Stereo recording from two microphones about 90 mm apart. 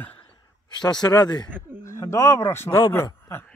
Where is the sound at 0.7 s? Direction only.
55° left (ahead or behind).